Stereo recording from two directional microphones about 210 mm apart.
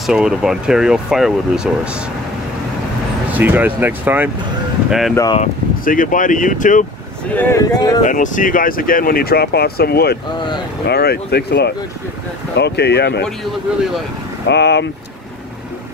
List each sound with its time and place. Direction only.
0.0 s speech: 5° right (ahead or behind)
3.3 s speech: 10° right (ahead or behind)
5.1 s speech: 20° left (ahead or behind)
5.4 s speech: 40° left (ahead or behind)
7.3 s speech: 15° left (ahead or behind)
8.0 s speech: 35° left (ahead or behind); by 13.2 s 50° left (ahead or behind)
14.5 s speech: 55° left (ahead or behind)